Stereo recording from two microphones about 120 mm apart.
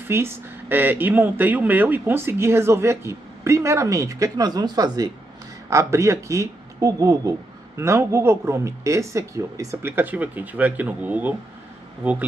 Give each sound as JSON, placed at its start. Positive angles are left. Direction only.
{"t": 0.1, "sound": "speech", "side_deg": -20}